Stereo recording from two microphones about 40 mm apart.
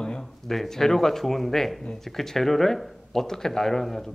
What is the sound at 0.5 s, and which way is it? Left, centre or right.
Speech, centre.